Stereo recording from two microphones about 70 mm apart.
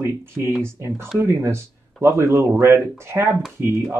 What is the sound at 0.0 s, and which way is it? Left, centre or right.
Speech, right.